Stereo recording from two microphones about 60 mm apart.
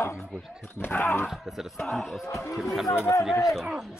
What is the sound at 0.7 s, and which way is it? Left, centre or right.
Speech, left.